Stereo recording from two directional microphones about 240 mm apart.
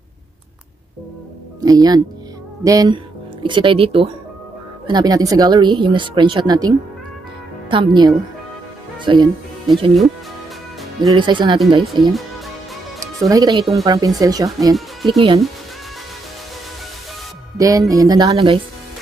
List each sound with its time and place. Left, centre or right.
1.6 s speech: centre
7.7 s speech: centre
11.1 s speech: centre
11.8 s speech: centre
13.0 s speech: centre
17.6 s speech: centre